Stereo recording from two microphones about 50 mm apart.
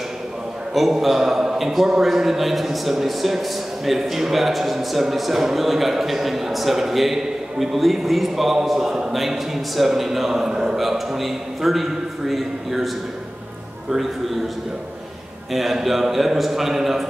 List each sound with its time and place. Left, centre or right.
0.7 s a man's voice: centre
10.8 s a man's voice: centre
15.5 s a man's voice: centre